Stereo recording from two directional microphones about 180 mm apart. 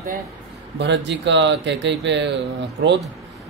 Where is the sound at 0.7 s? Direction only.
75° right (ahead or behind).